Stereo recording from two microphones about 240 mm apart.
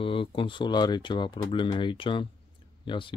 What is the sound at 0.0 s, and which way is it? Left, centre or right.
Speech, left.